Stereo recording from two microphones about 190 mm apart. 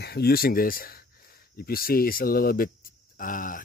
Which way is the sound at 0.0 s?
55° left (ahead or behind).